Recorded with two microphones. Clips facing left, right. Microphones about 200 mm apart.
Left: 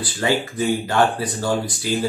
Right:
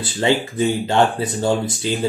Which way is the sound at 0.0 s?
25° right (ahead or behind).